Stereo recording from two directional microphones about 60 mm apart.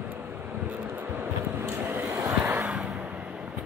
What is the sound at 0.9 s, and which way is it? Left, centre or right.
Vehicle, right.